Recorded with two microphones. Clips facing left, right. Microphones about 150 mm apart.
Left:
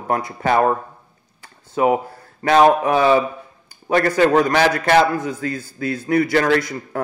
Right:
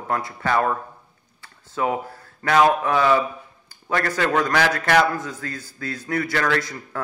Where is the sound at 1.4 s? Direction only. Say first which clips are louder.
Left 6 dB; 15° left (ahead or behind).